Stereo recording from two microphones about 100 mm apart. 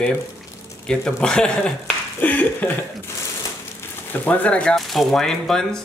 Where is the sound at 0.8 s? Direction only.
10° left (ahead or behind).